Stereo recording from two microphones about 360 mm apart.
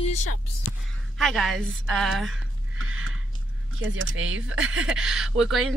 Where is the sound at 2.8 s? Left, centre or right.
Right.